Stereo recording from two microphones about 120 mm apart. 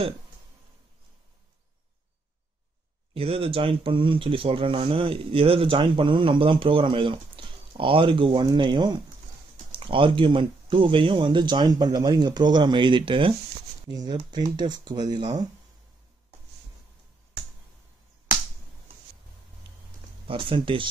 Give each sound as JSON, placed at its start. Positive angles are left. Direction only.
{"t": 3.2, "sound": "speech", "side_deg": -50}
{"t": 20.2, "sound": "speech", "side_deg": -45}